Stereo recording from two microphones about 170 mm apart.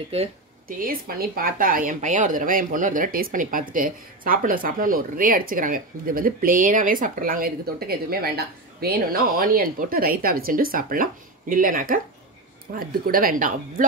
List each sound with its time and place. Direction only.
0.7 s speech: 55° right (ahead or behind)